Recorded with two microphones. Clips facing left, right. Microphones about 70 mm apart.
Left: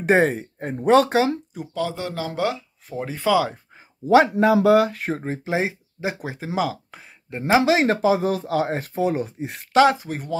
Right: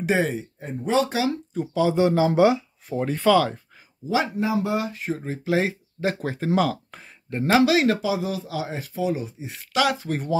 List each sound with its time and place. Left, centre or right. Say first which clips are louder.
0.0 s speech: left 5 dB; left
1.7 s speech: right 7 dB; centre
2.9 s speech: right 2 dB; centre
4.1 s a man's voice: left 8 dB; left
4.5 s speech: left 9 dB; left
5.2 s speech: left 3 dB; left
5.5 s speech: right 2 dB; centre
7.4 s speech: left 1 dB; left
9.7 s speech: left 6 dB; left
9.9 s speech: right 3 dB; centre